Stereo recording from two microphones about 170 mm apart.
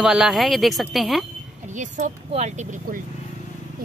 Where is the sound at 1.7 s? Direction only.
45° right (ahead or behind).